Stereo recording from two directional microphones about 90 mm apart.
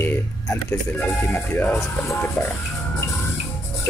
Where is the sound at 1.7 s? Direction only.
30° left (ahead or behind).